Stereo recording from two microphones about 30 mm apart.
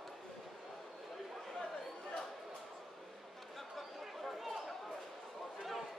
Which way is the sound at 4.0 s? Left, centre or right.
Centre.